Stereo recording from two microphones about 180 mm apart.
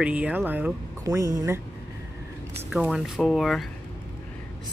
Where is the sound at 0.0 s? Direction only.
5° right (ahead or behind).